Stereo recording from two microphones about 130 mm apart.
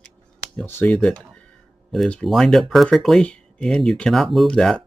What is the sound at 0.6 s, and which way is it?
Speech, 15° left (ahead or behind).